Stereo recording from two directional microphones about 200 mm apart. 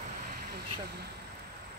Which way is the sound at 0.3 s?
50° right (ahead or behind).